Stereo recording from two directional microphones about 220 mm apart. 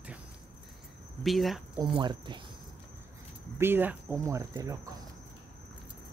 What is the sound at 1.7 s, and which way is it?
Speech, 20° right (ahead or behind).